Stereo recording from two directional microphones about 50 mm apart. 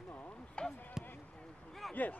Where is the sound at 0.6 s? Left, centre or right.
Centre.